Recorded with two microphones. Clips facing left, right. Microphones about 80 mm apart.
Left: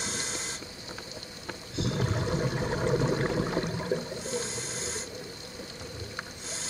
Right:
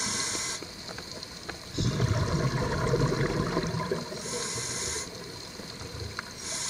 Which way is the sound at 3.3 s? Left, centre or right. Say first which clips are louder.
Even; centre.